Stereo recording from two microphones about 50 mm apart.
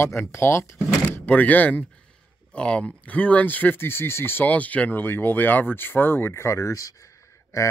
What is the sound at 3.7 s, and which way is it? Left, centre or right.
Speech, left.